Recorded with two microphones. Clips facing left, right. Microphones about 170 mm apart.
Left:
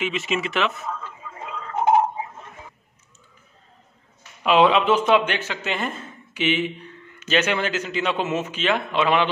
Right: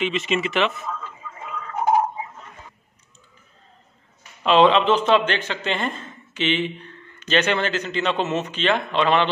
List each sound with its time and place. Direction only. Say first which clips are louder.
0.0 s speech: right 2 dB; centre (ahead or behind)
1.4 s tick-tock: left 2 dB; 30° left (ahead or behind)
4.4 s a man's voice: right 1 dB; 10° left (ahead or behind)